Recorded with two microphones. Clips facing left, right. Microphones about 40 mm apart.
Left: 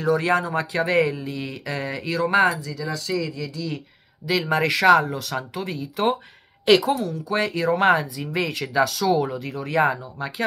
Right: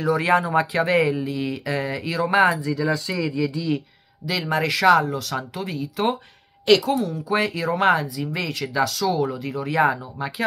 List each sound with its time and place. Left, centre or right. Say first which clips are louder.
0.0 s speech: right 1 dB; centre
2.6 s speech: right 6 dB; centre
4.3 s speech: left 2 dB; centre
7.0 s speech: right 2 dB; centre